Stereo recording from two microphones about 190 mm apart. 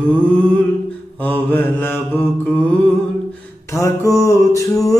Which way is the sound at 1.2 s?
10° left (ahead or behind).